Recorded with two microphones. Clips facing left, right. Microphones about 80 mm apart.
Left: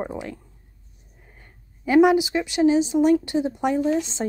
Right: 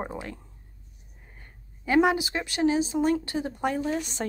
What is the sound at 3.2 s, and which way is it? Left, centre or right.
Speech, centre.